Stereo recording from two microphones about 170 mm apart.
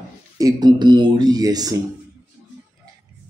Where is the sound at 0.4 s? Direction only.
25° right (ahead or behind).